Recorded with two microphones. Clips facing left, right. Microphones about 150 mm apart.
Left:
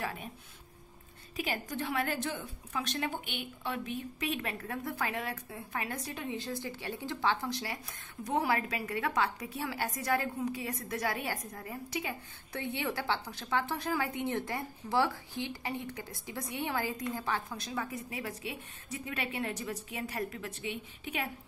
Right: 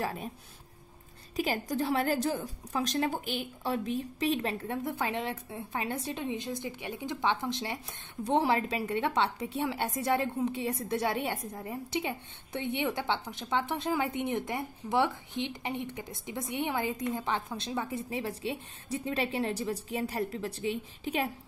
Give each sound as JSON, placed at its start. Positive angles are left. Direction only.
{"t": 0.0, "sound": "speech", "side_deg": -35}
{"t": 1.3, "sound": "a woman's voice", "side_deg": -35}